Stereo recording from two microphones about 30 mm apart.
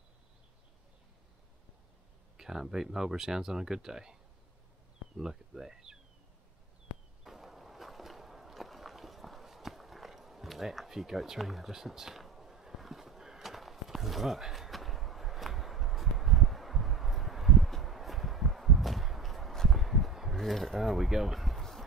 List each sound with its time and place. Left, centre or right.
2.3 s speech: centre
7.2 s walk: centre
10.9 s speech: centre
11.7 s speech: centre
12.2 s a sound: centre
20.3 s speech: centre
21.5 s a sound: centre